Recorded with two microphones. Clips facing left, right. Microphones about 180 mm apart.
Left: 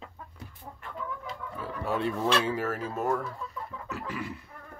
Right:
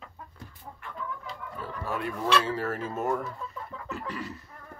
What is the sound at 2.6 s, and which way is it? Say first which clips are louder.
Speech: even; centre (ahead or behind).